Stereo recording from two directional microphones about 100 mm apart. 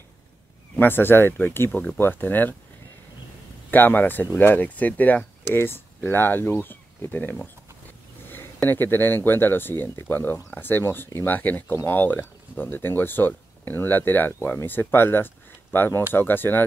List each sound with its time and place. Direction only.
0.7 s speech: 20° left (ahead or behind)
3.7 s speech: 20° left (ahead or behind)
8.6 s speech: 20° left (ahead or behind)